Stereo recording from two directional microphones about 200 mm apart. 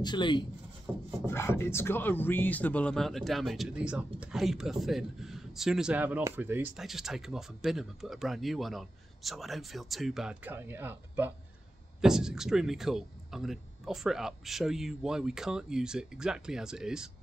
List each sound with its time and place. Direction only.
0.0 s speech: 25° left (ahead or behind)
1.2 s speech: 10° left (ahead or behind); by 17.1 s 5° right (ahead or behind)